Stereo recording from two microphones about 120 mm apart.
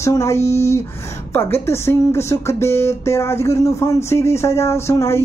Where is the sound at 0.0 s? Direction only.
25° left (ahead or behind).